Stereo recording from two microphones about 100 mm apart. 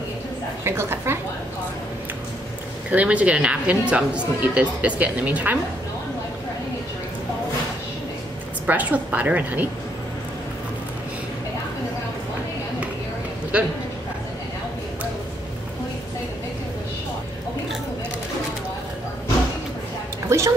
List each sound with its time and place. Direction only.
0.7 s a woman's voice: 25° right (ahead or behind)
2.9 s speech: 15° right (ahead or behind)
8.6 s speech: 15° right (ahead or behind)
13.5 s speech: 10° right (ahead or behind)
20.2 s music: 30° right (ahead or behind)